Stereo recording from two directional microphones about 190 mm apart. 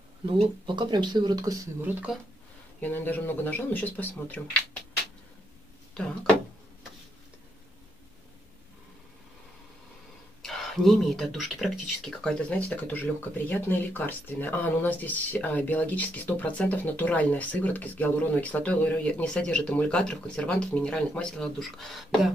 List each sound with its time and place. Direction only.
0.3 s speech: 25° right (ahead or behind); by 2.1 s 10° right (ahead or behind)
2.8 s speech: 10° left (ahead or behind)
10.4 s speech: centre (ahead or behind)